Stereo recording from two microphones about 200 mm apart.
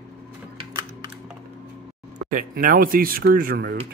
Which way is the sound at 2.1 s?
40° right (ahead or behind).